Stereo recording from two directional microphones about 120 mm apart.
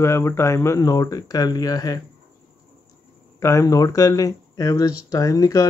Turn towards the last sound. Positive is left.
turn(degrees=30)  # may be behind; listen again after turning